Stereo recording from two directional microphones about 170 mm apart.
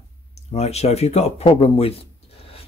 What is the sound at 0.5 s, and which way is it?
Speech, 40° left (ahead or behind).